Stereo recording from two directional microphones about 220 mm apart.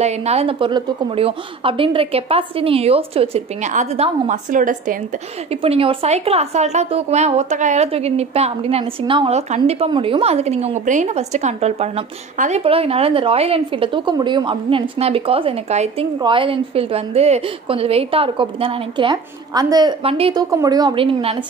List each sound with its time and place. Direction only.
0.0 s a woman's voice: 30° right (ahead or behind)
5.5 s a woman's voice: 25° right (ahead or behind)